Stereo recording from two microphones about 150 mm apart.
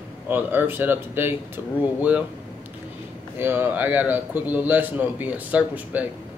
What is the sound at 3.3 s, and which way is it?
Speech, 15° right (ahead or behind).